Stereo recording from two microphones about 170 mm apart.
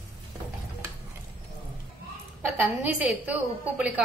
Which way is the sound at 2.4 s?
10° right (ahead or behind).